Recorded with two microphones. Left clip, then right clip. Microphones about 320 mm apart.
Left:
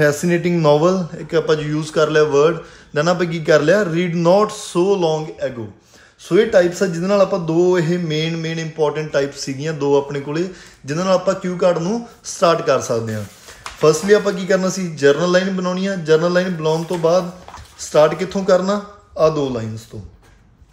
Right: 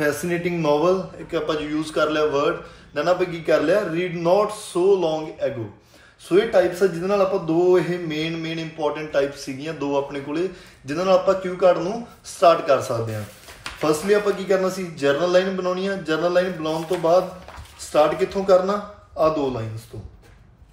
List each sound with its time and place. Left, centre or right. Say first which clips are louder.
0.0 s a man's voice: left 6 dB; left